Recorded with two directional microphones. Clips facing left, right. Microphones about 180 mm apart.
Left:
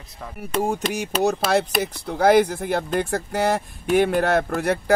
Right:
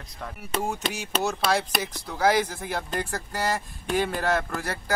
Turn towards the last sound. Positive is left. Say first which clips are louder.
# left 9 dB
turn(degrees=60)  # may be behind; listen again after turning